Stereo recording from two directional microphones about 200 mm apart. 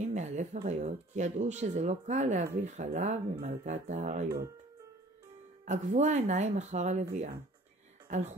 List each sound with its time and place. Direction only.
0.0 s a sound: 35° right (ahead or behind)
0.7 s speech: 35° right (ahead or behind)
5.7 s speech: 35° right (ahead or behind)
8.1 s speech: 35° right (ahead or behind)